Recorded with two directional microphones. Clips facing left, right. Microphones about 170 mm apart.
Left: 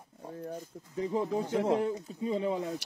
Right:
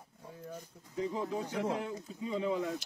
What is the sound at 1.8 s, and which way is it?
Speech, 35° left (ahead or behind).